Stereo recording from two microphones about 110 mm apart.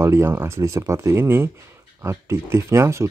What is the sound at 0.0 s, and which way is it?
Speech, 25° right (ahead or behind).